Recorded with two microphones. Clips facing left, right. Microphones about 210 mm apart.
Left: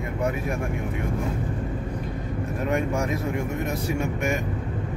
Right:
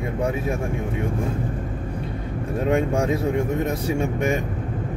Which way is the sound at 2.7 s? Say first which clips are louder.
Right 5 dB; 30° right (ahead or behind).